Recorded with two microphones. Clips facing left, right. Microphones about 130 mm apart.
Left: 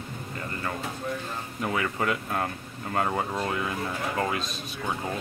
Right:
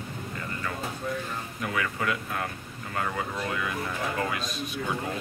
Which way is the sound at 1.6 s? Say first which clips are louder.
Left 3 dB; 30° left (ahead or behind).